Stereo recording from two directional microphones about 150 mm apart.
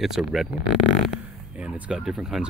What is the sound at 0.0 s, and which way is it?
Speech, centre (ahead or behind).